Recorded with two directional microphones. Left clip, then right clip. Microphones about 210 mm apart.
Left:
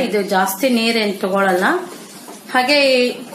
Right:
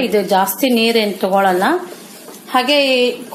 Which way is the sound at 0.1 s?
35° right (ahead or behind).